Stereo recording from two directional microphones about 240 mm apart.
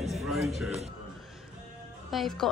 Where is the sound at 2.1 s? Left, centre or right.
Centre.